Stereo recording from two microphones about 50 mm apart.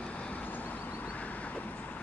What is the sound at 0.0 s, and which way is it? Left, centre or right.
Vehicle, left.